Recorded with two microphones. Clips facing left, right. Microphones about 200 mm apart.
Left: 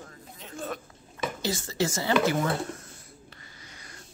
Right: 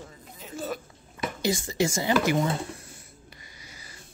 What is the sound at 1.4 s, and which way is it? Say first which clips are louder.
Speech: right 4 dB; 15° right (ahead or behind).